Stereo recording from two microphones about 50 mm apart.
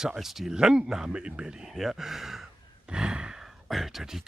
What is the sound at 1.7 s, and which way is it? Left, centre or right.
Speech, centre.